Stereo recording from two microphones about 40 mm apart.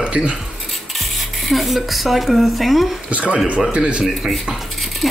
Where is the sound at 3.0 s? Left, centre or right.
Right.